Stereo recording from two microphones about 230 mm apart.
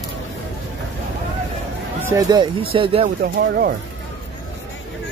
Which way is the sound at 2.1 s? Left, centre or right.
Centre.